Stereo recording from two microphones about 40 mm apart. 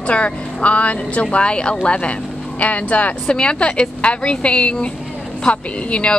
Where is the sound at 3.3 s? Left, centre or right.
Left.